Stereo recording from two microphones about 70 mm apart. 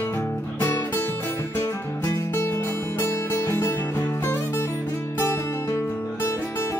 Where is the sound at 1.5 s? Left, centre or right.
Left.